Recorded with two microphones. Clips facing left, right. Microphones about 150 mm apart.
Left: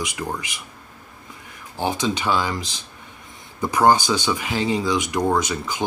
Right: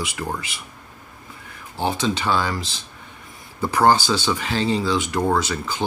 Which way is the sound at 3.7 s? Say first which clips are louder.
Even; 15° left (ahead or behind).